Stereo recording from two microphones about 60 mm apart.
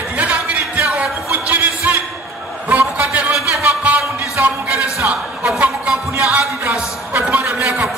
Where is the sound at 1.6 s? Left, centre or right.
Right.